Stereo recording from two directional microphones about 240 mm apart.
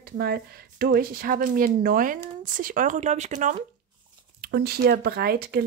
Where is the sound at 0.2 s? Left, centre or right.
Right.